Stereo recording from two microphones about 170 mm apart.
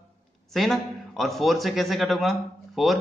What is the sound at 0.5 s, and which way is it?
A man's voice, centre (ahead or behind).